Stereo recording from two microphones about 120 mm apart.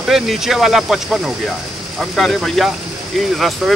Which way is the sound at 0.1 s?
5° right (ahead or behind).